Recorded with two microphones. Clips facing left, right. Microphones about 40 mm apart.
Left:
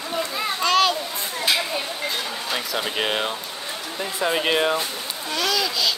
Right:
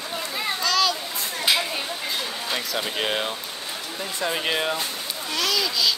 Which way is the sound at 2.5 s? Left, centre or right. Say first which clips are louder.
Left 2 dB; centre.